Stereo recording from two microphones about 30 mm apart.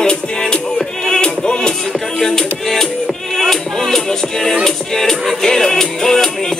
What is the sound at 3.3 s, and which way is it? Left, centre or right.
Speech, centre.